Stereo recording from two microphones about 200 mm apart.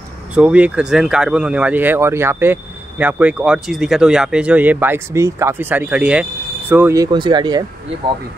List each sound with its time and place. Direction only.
0.3 s speech: 5° right (ahead or behind)